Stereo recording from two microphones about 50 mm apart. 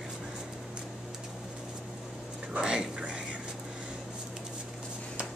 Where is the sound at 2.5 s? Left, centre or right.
Centre.